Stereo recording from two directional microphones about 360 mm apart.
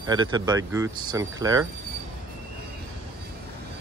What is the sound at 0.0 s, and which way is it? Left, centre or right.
Speech, centre.